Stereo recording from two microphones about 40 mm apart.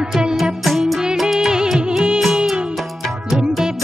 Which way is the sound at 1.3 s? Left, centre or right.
Centre.